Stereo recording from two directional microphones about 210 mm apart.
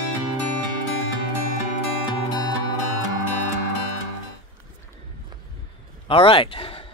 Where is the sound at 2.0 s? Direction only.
20° left (ahead or behind).